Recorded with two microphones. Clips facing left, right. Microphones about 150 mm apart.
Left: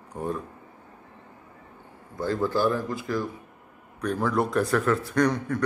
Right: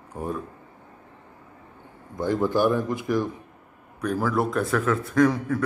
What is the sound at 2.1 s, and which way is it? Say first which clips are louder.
Speech: right 3 dB; 15° right (ahead or behind).